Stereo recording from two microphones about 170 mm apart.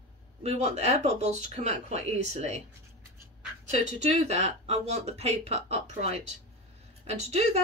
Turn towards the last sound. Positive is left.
turn(degrees=-40)  # may be behind; listen again after turning